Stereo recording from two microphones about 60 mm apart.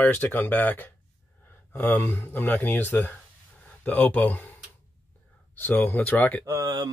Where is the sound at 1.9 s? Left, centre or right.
Left.